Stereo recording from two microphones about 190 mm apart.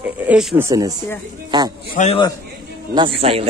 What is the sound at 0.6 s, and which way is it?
Speech, 20° right (ahead or behind).